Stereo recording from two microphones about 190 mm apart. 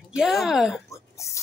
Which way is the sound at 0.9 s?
15° left (ahead or behind).